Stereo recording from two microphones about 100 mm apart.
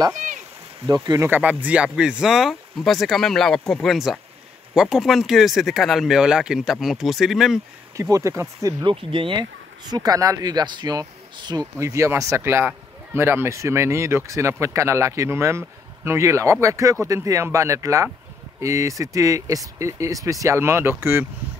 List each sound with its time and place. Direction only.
0.8 s speech: 35° right (ahead or behind)
1.3 s speech: 15° right (ahead or behind)
7.9 s a man's voice: 30° right (ahead or behind)
8.8 s speech: 60° right (ahead or behind); by 11.6 s 40° right (ahead or behind)
11.8 s a man's voice: 30° right (ahead or behind)